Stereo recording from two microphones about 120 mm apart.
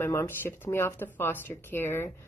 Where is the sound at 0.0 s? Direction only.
20° left (ahead or behind).